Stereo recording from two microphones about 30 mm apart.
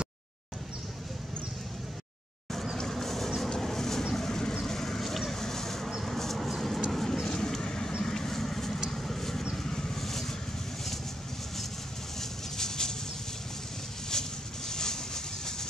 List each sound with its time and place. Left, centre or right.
2.9 s vehicle: centre
6.0 s a sound: centre
6.9 s vehicle: centre
9.6 s vehicle: left
12.2 s vehicle: centre
14.1 s a sound: left
14.7 s vehicle: left